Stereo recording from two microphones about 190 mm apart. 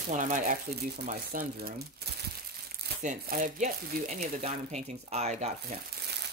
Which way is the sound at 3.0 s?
40° right (ahead or behind).